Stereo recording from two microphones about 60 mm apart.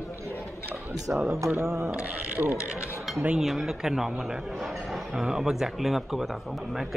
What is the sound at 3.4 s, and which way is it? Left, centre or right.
Speech, centre.